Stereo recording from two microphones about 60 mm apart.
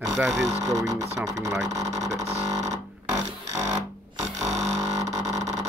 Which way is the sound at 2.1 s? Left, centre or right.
Right.